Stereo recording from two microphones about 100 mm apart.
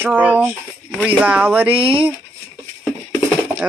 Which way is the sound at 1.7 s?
70° right (ahead or behind).